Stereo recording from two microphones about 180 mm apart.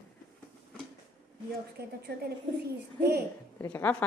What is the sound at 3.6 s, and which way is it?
Speech, 10° left (ahead or behind).